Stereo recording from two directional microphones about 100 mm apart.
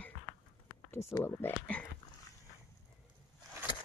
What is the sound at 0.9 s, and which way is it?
Speech, 25° left (ahead or behind).